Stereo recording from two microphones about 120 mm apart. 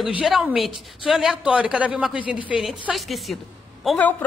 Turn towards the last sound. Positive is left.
turn(degrees=15)  # may be behind; listen again after turning